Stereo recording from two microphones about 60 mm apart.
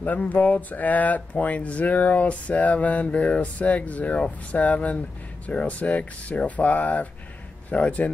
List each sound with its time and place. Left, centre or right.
0.0 s speech: left